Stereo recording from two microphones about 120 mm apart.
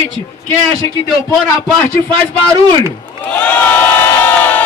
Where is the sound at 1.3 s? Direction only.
Centre (ahead or behind).